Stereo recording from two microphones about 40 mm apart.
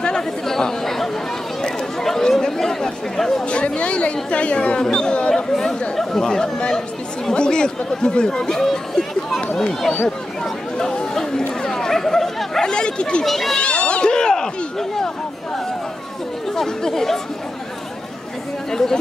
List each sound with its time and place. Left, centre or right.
0.5 s chatter: centre
3.4 s speech: left
5.3 s speech: centre
10.4 s chatter: centre
11.6 s bow-wow: centre
12.6 s speech: left
13.2 s speech: centre
13.6 s a sound: left; by 15.0 s centre
16.5 s speech: centre
18.7 s speech: centre